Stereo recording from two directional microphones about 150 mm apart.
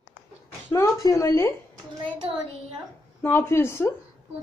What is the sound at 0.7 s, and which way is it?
Speech, 20° left (ahead or behind).